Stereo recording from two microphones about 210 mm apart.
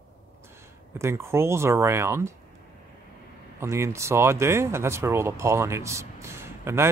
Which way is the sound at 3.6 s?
15° right (ahead or behind).